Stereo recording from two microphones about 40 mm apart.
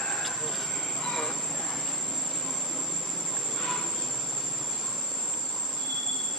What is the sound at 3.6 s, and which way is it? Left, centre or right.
Train, centre.